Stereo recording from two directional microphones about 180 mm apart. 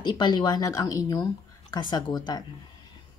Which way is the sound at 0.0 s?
25° left (ahead or behind).